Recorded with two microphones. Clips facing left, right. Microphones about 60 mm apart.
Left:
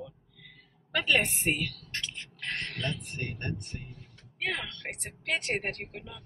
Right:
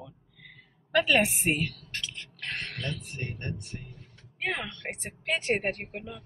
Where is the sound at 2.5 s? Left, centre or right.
Centre.